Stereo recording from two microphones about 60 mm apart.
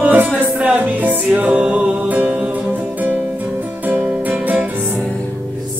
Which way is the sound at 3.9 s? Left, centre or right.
Right.